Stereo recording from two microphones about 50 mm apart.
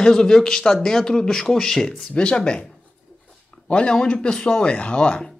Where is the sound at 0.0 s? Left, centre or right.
Centre.